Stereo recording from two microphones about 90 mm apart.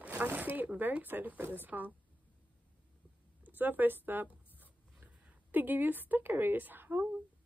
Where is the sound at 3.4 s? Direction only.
20° right (ahead or behind).